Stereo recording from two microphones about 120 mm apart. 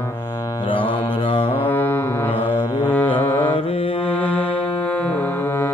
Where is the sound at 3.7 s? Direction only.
50° left (ahead or behind).